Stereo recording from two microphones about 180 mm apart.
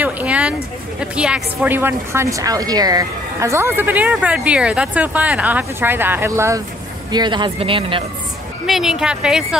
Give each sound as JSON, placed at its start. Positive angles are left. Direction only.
{"t": 0.0, "sound": "a sound", "side_deg": -10}
{"t": 1.1, "sound": "a woman's voice", "side_deg": -5}
{"t": 8.6, "sound": "speech", "side_deg": 0}